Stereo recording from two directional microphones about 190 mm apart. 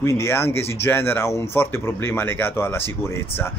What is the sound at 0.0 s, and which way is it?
Speech, 15° left (ahead or behind).